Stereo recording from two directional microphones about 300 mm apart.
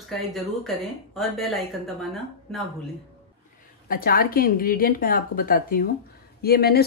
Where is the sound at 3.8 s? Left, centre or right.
Left.